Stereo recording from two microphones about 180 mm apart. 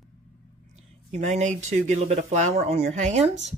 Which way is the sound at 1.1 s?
40° right (ahead or behind).